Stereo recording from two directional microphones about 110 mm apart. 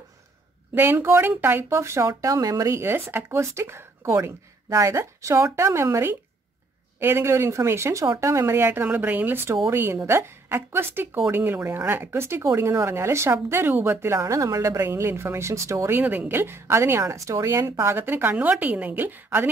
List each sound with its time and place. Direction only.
0.7 s speech: 20° right (ahead or behind)
16.0 s speech: 15° right (ahead or behind)